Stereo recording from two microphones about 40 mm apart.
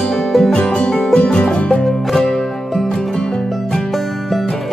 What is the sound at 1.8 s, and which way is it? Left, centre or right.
Music, centre.